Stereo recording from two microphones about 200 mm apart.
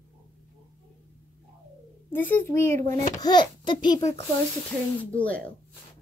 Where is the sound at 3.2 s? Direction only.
20° left (ahead or behind).